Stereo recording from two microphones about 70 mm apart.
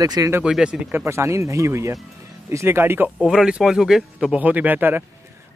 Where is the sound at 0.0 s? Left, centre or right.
Right.